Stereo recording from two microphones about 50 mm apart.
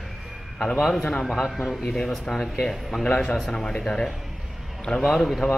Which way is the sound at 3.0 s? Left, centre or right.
Left.